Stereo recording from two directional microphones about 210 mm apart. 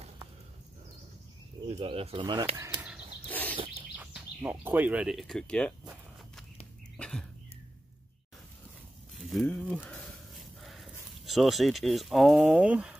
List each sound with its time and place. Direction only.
1.7 s speech: 30° right (ahead or behind); by 3.0 s 10° right (ahead or behind)
3.3 s bird: 10° left (ahead or behind)
3.9 s speech: 5° right (ahead or behind)
7.0 s speech: 5° left (ahead or behind)
9.1 s speech: centre (ahead or behind)